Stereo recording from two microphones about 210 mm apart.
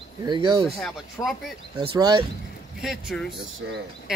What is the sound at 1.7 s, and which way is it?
Speech, 20° right (ahead or behind).